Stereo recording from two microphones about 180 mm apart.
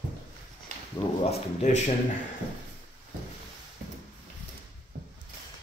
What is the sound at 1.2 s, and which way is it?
Speech, 40° left (ahead or behind).